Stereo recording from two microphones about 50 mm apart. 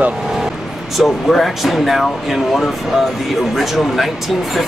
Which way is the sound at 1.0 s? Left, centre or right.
Centre.